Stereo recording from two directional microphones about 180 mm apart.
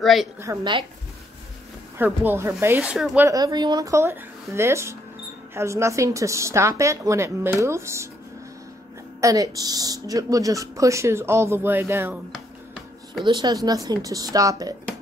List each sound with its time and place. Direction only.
0.0 s a woman's voice: centre (ahead or behind)
0.4 s speech: 15° right (ahead or behind)
2.0 s speech: 10° right (ahead or behind)
3.3 s speech: 20° right (ahead or behind)
9.2 s speech: 20° right (ahead or behind)
13.2 s speech: 25° right (ahead or behind)